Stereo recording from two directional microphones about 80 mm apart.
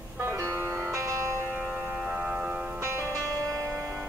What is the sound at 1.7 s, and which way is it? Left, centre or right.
Music, centre.